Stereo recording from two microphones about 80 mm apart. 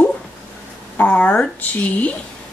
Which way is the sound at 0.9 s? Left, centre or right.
Centre.